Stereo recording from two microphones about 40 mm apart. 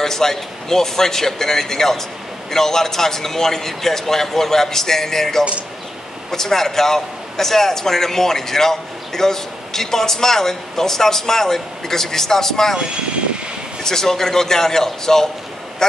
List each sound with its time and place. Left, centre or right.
0.0 s a man's voice: centre
12.7 s speech: right
13.8 s a man's voice: centre